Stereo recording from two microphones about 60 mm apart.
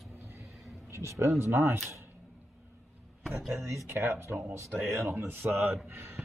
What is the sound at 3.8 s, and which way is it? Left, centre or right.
Speech, right.